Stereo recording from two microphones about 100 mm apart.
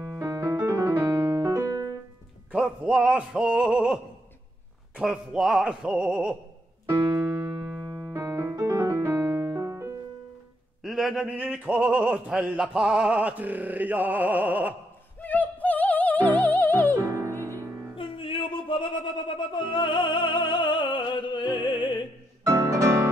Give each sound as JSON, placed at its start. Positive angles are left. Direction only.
{"t": 0.0, "sound": "music", "side_deg": -30}
{"t": 2.5, "sound": "male singing", "side_deg": -10}
{"t": 4.9, "sound": "a sound", "side_deg": -10}
{"t": 6.9, "sound": "piano", "side_deg": -20}
{"t": 9.5, "sound": "music", "side_deg": -30}
{"t": 10.8, "sound": "a sound", "side_deg": 0}
{"t": 11.2, "sound": "a sound", "side_deg": -15}
{"t": 15.2, "sound": "music", "side_deg": 15}
{"t": 16.9, "sound": "music", "side_deg": -35}
{"t": 17.9, "sound": "music", "side_deg": 60}
{"t": 22.5, "sound": "music", "side_deg": -30}